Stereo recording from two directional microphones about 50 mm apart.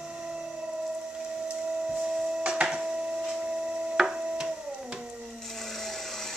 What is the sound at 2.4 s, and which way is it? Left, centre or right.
Printer, centre.